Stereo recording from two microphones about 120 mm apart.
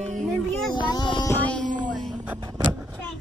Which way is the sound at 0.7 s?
35° left (ahead or behind).